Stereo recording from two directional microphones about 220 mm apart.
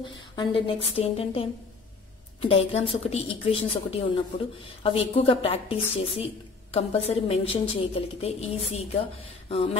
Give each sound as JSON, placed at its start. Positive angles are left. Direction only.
{"t": 0.0, "sound": "a woman's voice", "side_deg": 20}